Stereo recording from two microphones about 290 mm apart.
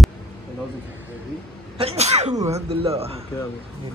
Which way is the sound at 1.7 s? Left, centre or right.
Right.